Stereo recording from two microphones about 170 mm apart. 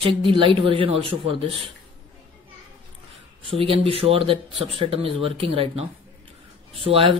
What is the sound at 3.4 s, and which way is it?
Speech, 35° right (ahead or behind).